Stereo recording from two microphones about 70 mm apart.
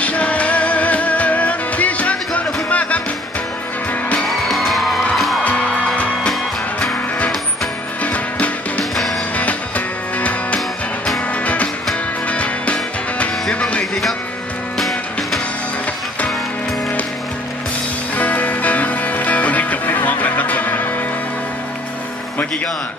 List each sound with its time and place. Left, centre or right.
0.0 s music: centre
4.3 s music: centre
8.0 s music: left
14.8 s music: centre
18.1 s music: left